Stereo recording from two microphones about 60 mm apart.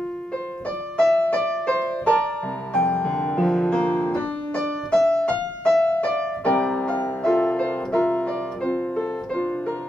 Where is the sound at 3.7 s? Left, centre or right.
Left.